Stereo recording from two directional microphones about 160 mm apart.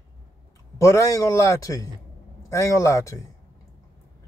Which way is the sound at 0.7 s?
20° left (ahead or behind).